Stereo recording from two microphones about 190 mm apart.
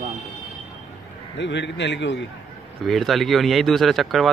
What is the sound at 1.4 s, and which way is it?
Speech, 65° left (ahead or behind).